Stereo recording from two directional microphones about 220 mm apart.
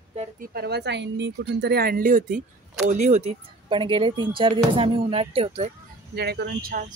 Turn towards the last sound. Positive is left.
turn(degrees=-40)  # may be behind; listen again after turning